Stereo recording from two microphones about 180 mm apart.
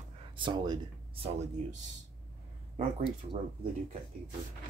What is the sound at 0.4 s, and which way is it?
Speech, 25° right (ahead or behind).